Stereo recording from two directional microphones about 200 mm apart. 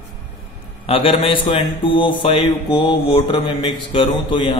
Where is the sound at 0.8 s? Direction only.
30° left (ahead or behind).